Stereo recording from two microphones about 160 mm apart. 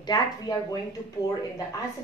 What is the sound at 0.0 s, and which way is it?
Speech, 25° left (ahead or behind).